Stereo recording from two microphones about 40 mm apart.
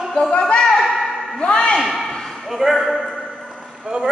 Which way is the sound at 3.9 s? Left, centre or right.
Right.